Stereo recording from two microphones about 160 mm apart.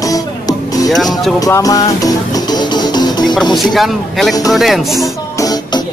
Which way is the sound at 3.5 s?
Centre (ahead or behind).